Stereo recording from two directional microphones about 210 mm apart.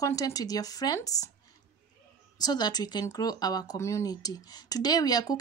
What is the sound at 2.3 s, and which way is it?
Speech, 20° left (ahead or behind).